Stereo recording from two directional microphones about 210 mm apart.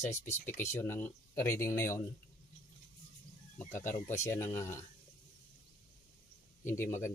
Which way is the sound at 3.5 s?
10° left (ahead or behind).